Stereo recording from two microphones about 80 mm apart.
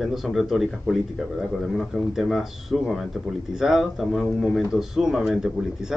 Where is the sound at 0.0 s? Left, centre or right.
Centre.